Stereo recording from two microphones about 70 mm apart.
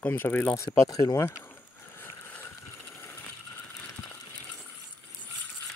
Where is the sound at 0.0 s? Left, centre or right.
Left.